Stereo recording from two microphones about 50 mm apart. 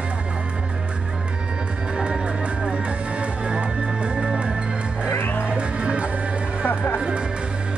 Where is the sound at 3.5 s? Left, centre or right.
Right.